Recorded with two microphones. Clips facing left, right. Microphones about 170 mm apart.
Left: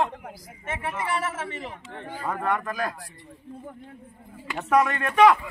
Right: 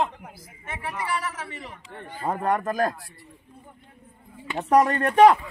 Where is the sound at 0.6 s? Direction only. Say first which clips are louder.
Left 2 dB; 25° left (ahead or behind).